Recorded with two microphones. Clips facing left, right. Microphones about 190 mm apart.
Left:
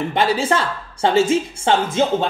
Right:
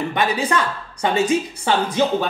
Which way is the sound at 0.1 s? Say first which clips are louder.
Left 4 dB; 25° left (ahead or behind).